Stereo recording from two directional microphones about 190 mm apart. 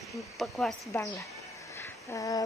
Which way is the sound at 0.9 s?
15° left (ahead or behind).